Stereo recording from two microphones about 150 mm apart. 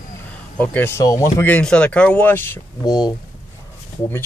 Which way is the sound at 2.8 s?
30° left (ahead or behind).